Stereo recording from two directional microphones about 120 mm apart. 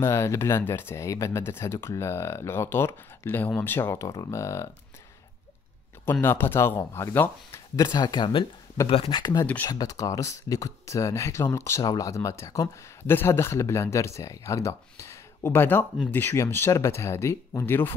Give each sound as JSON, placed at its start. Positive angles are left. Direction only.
{"t": 0.0, "sound": "speech", "side_deg": 25}
{"t": 6.2, "sound": "speech", "side_deg": 20}
{"t": 7.8, "sound": "speech", "side_deg": 35}
{"t": 9.2, "sound": "speech", "side_deg": 35}